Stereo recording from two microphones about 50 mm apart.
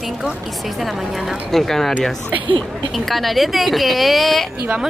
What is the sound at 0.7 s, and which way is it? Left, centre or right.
Speech, centre.